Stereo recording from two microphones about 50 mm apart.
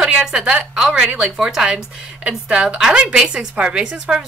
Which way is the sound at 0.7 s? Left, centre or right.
Centre.